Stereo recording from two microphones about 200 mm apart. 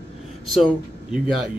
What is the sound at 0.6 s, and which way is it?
Speech, centre (ahead or behind).